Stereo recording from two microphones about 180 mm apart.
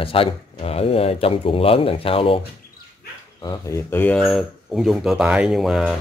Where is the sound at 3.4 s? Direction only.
20° left (ahead or behind).